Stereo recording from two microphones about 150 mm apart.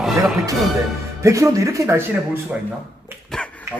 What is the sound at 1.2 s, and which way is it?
Speech, 20° right (ahead or behind).